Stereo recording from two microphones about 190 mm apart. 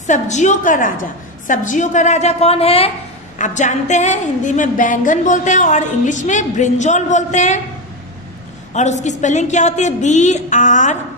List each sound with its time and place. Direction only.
0.0 s a woman's voice: 40° left (ahead or behind)
8.7 s a woman's voice: 35° left (ahead or behind)